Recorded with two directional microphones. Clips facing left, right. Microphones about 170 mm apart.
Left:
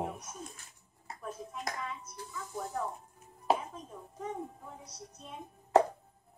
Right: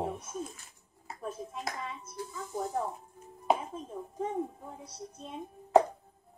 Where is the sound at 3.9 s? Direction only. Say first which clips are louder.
Right 8 dB; 30° right (ahead or behind).